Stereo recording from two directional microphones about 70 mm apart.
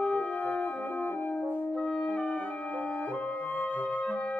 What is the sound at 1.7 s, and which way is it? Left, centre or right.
Brass instrument, centre.